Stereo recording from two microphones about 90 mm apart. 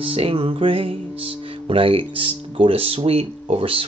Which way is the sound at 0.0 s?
90° right.